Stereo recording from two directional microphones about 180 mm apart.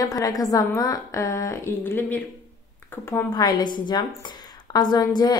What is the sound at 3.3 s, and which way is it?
A woman's voice, 20° left (ahead or behind).